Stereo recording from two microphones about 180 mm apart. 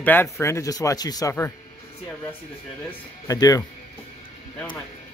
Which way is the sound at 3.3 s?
20° left (ahead or behind).